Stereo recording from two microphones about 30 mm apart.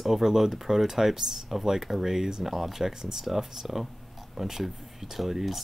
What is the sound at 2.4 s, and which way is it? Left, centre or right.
Speech, centre.